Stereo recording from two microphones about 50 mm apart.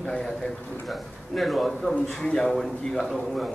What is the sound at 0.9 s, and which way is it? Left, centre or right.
A man's voice, centre.